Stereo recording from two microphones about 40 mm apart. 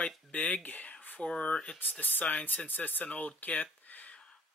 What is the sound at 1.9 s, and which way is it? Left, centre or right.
Speech, left.